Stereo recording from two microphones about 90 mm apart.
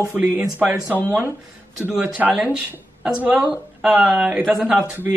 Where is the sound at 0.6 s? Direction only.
15° right (ahead or behind).